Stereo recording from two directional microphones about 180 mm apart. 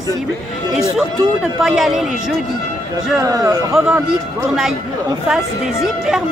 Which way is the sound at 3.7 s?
5° right (ahead or behind).